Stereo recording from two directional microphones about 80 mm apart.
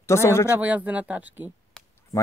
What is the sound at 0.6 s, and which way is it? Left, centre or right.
Speech, centre.